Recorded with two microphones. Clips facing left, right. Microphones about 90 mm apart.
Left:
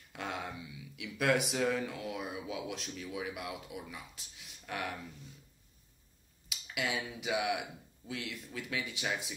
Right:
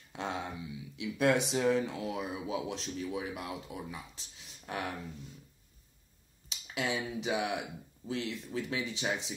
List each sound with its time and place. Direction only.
0.1 s a sound: 25° right (ahead or behind)
2.0 s speech: 30° right (ahead or behind)
6.5 s speech: 30° right (ahead or behind)